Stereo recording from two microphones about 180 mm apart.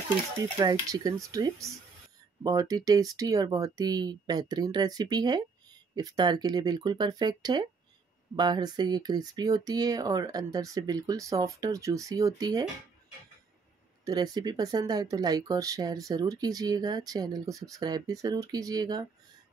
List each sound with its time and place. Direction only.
0.6 s speech: 20° right (ahead or behind)
14.0 s speech: 20° right (ahead or behind)